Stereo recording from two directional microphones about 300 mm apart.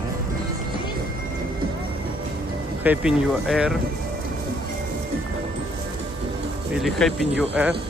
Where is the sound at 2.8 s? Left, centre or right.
Centre.